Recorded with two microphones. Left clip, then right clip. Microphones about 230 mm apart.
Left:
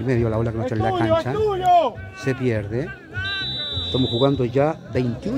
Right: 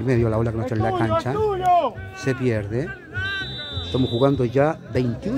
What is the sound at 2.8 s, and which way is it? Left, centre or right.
Music, right.